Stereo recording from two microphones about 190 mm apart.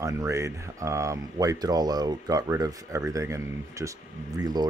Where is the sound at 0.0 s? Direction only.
15° right (ahead or behind).